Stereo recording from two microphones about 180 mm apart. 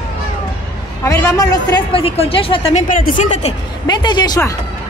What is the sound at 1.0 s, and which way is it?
A woman's voice, 20° left (ahead or behind).